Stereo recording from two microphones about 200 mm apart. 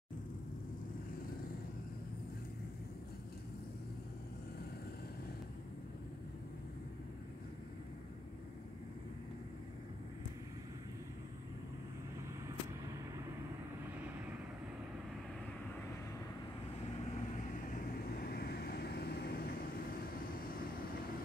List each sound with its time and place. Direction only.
17.6 s vehicle: 45° left (ahead or behind)